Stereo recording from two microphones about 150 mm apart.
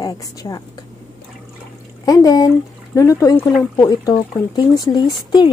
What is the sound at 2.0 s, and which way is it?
A woman's voice, 25° left (ahead or behind).